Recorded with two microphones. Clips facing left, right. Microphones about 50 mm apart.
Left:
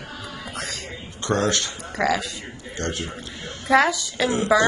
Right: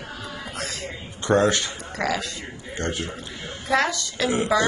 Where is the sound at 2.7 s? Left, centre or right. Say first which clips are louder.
Even; right.